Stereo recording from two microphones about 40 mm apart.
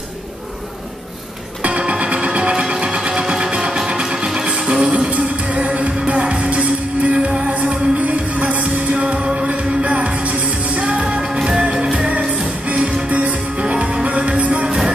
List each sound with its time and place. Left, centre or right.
1.6 s music: right
5.1 s music: right
5.6 s music: right
11.1 s music: centre
12.1 s music: right